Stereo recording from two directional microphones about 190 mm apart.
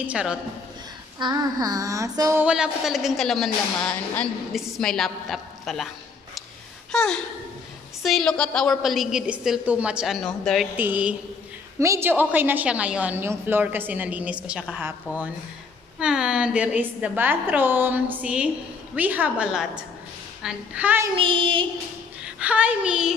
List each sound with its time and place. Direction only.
0.0 s a woman's voice: 5° right (ahead or behind)
1.2 s female singing: 20° right (ahead or behind)
2.4 s a woman's voice: 5° right (ahead or behind)
6.9 s a woman's voice: 5° left (ahead or behind)
10.8 s a woman's voice: 10° right (ahead or behind)
21.2 s female singing: 25° right (ahead or behind)
22.2 s speech: 5° right (ahead or behind)